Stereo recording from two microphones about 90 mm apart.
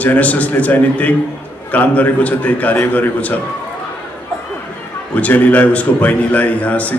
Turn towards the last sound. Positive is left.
turn(degrees=15)  # may be behind; listen again after turning